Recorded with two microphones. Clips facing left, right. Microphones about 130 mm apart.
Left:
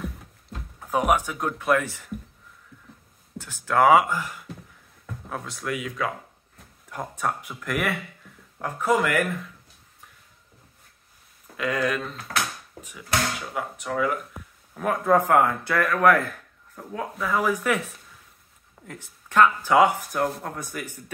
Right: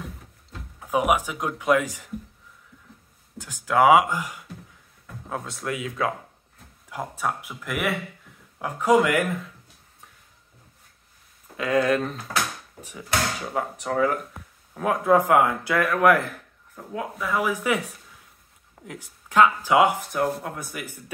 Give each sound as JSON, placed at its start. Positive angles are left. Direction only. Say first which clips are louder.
{"t": 0.7, "sound": "speech", "louder": "even", "side_deg": -10}
{"t": 3.3, "sound": "speech", "louder": "right 1 dB", "side_deg": -15}
{"t": 6.9, "sound": "speech", "louder": "even", "side_deg": -10}
{"t": 11.5, "sound": "speech", "louder": "right 4 dB", "side_deg": -25}
{"t": 13.5, "sound": "speech", "louder": "right 3 dB", "side_deg": -35}
{"t": 14.7, "sound": "speech", "louder": "right 1 dB", "side_deg": -15}
{"t": 18.9, "sound": "speech", "louder": "right 2 dB", "side_deg": -15}
{"t": 20.1, "sound": "speech", "louder": "right 1 dB", "side_deg": -5}